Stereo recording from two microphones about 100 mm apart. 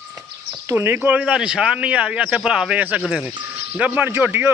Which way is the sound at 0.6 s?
25° right (ahead or behind).